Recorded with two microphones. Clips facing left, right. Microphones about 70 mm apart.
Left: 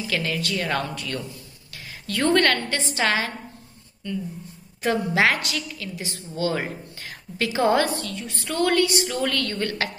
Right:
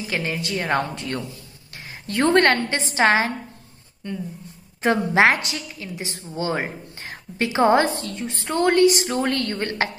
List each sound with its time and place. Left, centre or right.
0.0 s a woman's voice: right
4.8 s a woman's voice: right